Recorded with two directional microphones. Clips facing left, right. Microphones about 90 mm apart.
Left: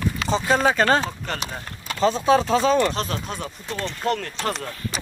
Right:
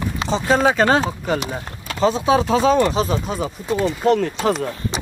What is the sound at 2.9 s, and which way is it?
Speech, 5° right (ahead or behind).